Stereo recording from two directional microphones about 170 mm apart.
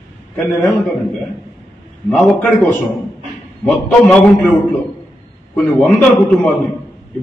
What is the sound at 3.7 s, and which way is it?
Speech, 5° left (ahead or behind).